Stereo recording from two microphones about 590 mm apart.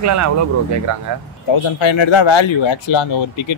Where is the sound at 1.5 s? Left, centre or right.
Left.